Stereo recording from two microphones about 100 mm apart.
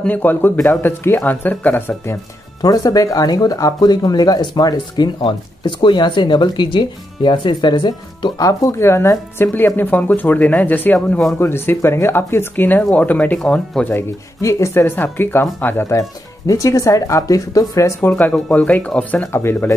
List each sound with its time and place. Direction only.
0.0 s speech: 15° left (ahead or behind)
2.6 s speech: 40° left (ahead or behind)
8.4 s speech: 35° left (ahead or behind); by 13.8 s 10° left (ahead or behind)
13.8 s speech: 25° left (ahead or behind)
18.1 s speech: 15° left (ahead or behind)